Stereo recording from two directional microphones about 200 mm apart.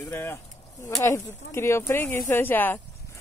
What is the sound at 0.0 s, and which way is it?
A woman's voice, 10° left (ahead or behind).